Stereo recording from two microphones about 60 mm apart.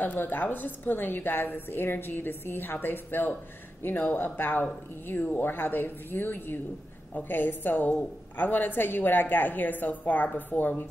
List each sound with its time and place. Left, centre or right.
0.0 s a woman's voice: left